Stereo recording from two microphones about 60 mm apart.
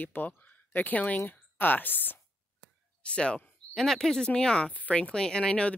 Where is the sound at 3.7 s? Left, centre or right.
Centre.